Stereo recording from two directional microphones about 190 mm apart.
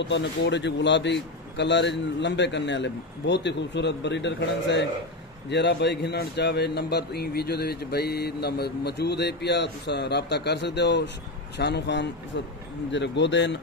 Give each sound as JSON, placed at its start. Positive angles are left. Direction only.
{"t": 0.0, "sound": "a man's voice", "side_deg": 65}